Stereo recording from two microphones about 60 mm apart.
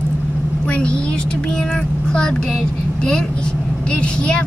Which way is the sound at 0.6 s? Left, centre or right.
Centre.